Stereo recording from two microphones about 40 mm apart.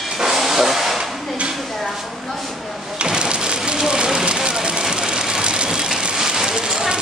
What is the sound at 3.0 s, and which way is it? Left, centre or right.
Rain, right.